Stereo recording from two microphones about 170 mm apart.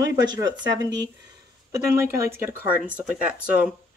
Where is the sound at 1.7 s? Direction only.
15° right (ahead or behind).